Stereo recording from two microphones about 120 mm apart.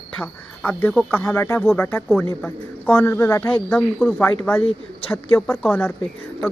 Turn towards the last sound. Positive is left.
turn(degrees=15)  # may be behind; listen again after turning